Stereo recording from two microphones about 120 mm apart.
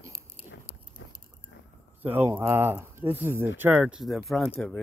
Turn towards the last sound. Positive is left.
turn(degrees=0)  # may be behind; listen again after turning